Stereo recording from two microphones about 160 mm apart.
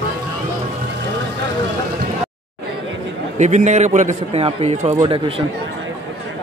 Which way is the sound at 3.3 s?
45° right (ahead or behind).